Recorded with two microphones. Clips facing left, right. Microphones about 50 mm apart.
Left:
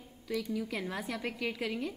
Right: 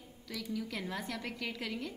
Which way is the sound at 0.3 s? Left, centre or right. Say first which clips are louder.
Left 5 dB; centre.